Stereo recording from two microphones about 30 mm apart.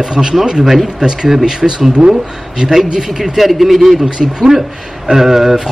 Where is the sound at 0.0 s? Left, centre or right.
Right.